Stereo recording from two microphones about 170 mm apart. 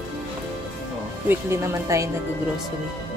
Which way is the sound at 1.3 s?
15° right (ahead or behind).